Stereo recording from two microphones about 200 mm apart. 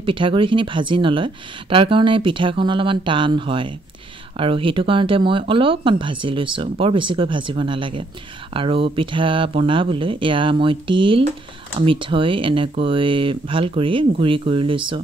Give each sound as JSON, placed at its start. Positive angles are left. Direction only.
{"t": 0.0, "sound": "speech", "side_deg": -25}